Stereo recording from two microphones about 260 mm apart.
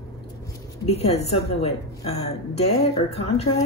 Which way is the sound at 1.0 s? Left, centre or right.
Left.